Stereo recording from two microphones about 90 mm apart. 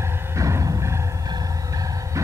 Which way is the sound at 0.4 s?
35° right (ahead or behind).